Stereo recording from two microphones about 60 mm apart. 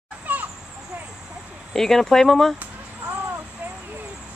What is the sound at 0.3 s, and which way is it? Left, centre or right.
Children playing, right.